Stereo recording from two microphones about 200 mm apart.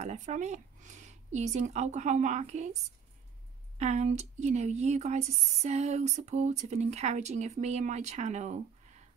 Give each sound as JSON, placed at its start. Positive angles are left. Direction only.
{"t": 0.0, "sound": "speech", "side_deg": -35}
{"t": 3.7, "sound": "speech", "side_deg": -35}